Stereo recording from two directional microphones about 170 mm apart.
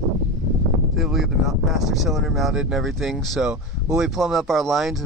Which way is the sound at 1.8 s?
Centre (ahead or behind).